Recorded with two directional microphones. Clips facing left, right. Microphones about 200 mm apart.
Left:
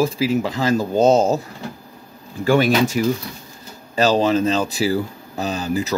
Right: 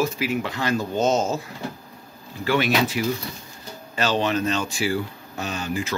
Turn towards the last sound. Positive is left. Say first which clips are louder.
# left 5 dB
turn(degrees=35)  # may be behind; listen again after turning